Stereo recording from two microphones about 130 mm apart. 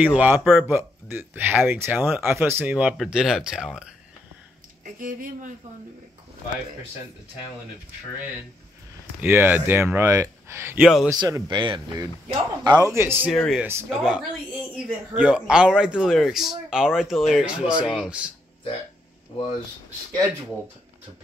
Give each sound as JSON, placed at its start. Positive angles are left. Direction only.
{"t": 0.0, "sound": "speech", "side_deg": -10}
{"t": 0.7, "sound": "speech", "side_deg": -15}
{"t": 4.9, "sound": "speech", "side_deg": -90}
{"t": 9.2, "sound": "speech", "side_deg": -15}
{"t": 10.8, "sound": "speech", "side_deg": 0}
{"t": 11.1, "sound": "speech", "side_deg": -30}
{"t": 12.8, "sound": "speech", "side_deg": -20}
{"t": 13.3, "sound": "speech", "side_deg": 0}